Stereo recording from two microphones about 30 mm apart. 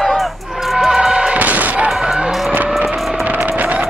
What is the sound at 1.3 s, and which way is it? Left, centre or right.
Gunshot, right.